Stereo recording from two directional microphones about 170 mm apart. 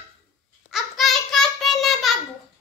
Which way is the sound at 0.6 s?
Centre (ahead or behind).